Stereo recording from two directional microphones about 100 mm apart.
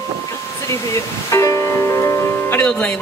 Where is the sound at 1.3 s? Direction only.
30° left (ahead or behind).